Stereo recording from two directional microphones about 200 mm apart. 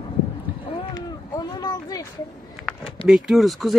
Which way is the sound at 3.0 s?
5° right (ahead or behind).